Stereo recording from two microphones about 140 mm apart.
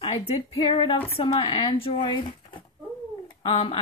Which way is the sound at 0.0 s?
40° left (ahead or behind).